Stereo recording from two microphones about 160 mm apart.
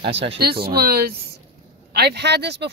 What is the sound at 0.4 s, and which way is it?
Speech, 75° right (ahead or behind).